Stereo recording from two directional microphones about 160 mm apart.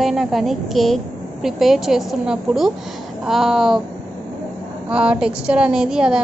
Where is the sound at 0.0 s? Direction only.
Centre (ahead or behind).